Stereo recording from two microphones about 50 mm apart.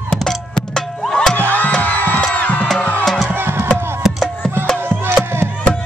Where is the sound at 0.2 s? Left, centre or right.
Centre.